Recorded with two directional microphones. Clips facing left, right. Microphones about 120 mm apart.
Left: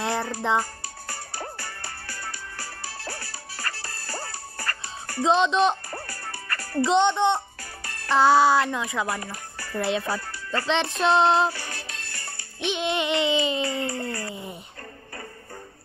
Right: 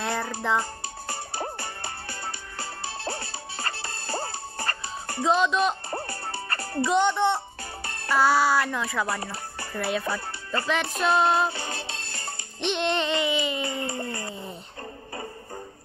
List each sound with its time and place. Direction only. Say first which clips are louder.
0.0 s music: left 2 dB; 25° left (ahead or behind)
0.6 s music: left 1 dB; 25° right (ahead or behind)
5.2 s speech: left 2 dB; 20° left (ahead or behind)
5.9 s music: right 4 dB; 25° right (ahead or behind)
6.9 s speech: left 2 dB; 20° left (ahead or behind)
9.2 s speech: right 2 dB; 25° right (ahead or behind)
11.0 s speech: left 2 dB; 25° left (ahead or behind)
11.4 s music: left 1 dB; 20° right (ahead or behind)
12.5 s music: even; 5° left (ahead or behind)
13.2 s speech: left 3 dB; 20° left (ahead or behind)
13.6 s a sound: left 2 dB; 20° right (ahead or behind)